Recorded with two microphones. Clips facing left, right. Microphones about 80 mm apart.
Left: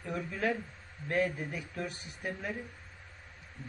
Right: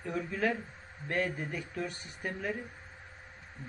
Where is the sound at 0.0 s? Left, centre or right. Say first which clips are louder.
Right 1 dB; centre.